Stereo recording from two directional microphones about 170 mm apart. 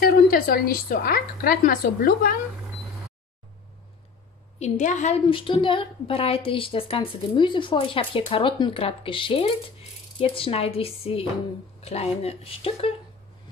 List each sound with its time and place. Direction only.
0.0 s a woman's voice: 60° left (ahead or behind)
4.6 s a woman's voice: 40° left (ahead or behind)